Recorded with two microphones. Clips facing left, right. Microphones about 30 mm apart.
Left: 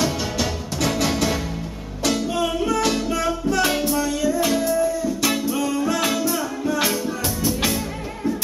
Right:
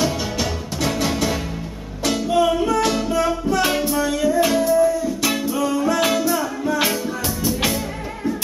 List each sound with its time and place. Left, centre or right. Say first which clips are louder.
0.8 s music: even; centre
2.3 s music: right 4 dB; centre
4.0 s music: right 3 dB; right
4.5 s music: right 4 dB; centre
5.6 s music: right 6 dB; centre